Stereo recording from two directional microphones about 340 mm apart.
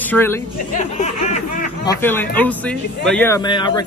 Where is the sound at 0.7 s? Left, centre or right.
Left.